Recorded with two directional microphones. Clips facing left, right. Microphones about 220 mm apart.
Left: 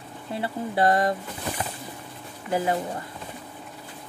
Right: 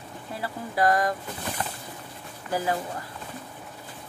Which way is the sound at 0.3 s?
25° left (ahead or behind).